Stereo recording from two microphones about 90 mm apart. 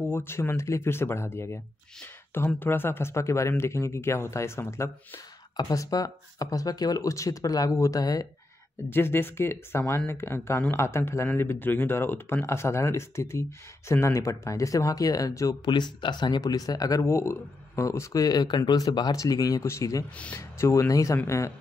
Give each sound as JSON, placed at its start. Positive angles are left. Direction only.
{"t": 0.1, "sound": "speech", "side_deg": 25}
{"t": 5.6, "sound": "speech", "side_deg": 45}
{"t": 8.9, "sound": "speech", "side_deg": 25}
{"t": 15.6, "sound": "speech", "side_deg": 55}